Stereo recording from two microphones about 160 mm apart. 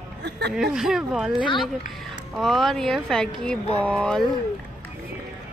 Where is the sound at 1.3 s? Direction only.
30° left (ahead or behind).